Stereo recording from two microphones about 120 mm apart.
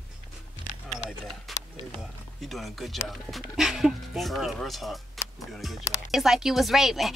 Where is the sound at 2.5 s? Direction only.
Centre (ahead or behind).